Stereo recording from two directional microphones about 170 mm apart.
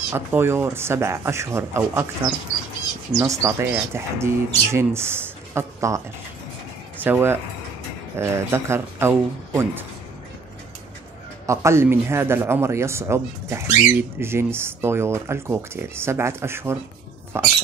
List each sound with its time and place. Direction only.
0.1 s speech: 10° right (ahead or behind)
11.4 s speech: 15° right (ahead or behind)